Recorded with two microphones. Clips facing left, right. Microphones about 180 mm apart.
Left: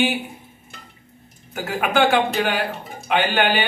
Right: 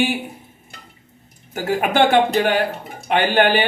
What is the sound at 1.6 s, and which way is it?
Speech, 40° right (ahead or behind).